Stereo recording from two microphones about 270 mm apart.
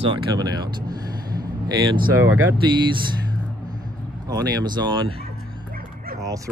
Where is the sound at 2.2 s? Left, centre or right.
Right.